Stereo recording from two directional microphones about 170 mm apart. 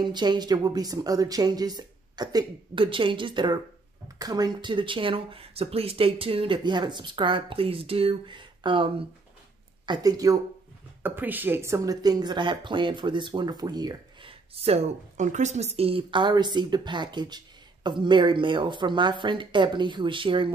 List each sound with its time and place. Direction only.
0.0 s speech: 25° right (ahead or behind)
11.0 s speech: 10° right (ahead or behind)
14.5 s speech: 35° right (ahead or behind)